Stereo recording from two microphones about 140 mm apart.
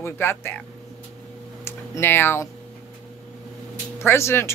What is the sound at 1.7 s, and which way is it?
Speech, 15° left (ahead or behind).